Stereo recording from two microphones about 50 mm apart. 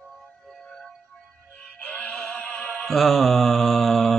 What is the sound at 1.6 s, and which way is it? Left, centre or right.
Music, left.